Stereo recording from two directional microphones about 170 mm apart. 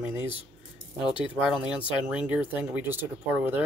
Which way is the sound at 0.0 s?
15° right (ahead or behind).